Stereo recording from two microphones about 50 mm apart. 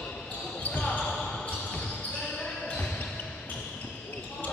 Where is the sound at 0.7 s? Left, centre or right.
Left.